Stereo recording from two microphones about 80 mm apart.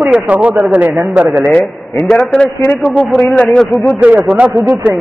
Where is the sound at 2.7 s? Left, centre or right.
Centre.